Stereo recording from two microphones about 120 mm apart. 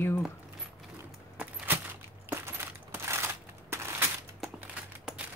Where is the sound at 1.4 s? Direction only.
15° right (ahead or behind).